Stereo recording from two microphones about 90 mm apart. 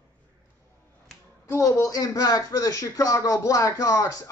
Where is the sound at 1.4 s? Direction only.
30° left (ahead or behind).